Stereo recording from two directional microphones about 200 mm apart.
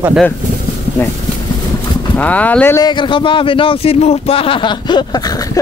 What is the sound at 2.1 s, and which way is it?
Speech, 5° left (ahead or behind).